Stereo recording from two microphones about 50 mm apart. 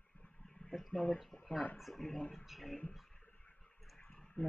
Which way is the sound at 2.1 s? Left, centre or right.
Centre.